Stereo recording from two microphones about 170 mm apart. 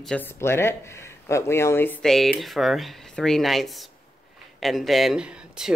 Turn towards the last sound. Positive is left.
turn(degrees=-5)  # may be behind; listen again after turning